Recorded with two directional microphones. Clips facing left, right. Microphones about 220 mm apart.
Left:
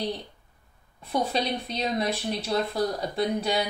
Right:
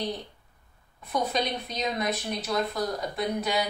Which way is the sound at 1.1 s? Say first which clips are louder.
Left 1 dB; 30° left (ahead or behind).